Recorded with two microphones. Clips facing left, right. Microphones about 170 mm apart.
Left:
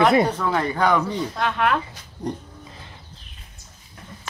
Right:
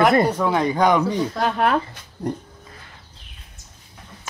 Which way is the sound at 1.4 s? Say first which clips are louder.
Right 1 dB; 40° right (ahead or behind).